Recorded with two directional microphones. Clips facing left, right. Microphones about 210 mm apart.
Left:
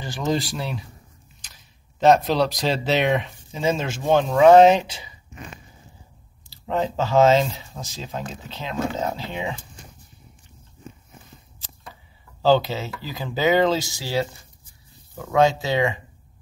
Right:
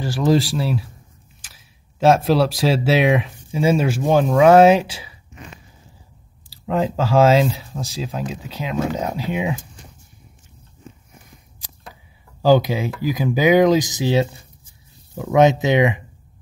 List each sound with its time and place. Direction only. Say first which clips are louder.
0.0 s speech: right 7 dB; centre (ahead or behind)
6.6 s speech: right 3 dB; 5° right (ahead or behind)
11.2 s speech: even; 15° right (ahead or behind)